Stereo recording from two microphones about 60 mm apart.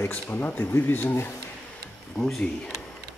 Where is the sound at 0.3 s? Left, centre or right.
Left.